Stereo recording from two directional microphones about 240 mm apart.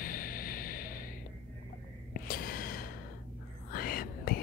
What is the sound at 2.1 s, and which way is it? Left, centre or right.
Gasp, left.